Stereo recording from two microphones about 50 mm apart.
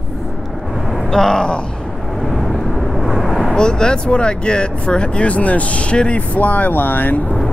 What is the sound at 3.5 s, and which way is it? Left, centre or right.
Speech, centre.